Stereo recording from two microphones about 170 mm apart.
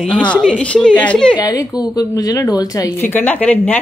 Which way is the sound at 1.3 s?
20° left (ahead or behind).